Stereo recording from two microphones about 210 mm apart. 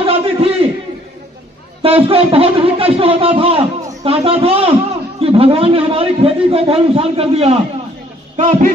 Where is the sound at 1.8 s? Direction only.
25° right (ahead or behind).